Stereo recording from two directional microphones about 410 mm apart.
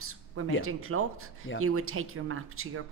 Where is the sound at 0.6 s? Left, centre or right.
Right.